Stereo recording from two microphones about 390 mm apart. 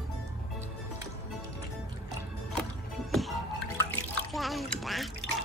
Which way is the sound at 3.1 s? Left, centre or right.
Centre.